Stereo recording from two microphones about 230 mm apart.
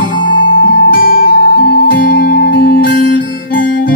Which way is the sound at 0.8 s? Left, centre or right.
Left.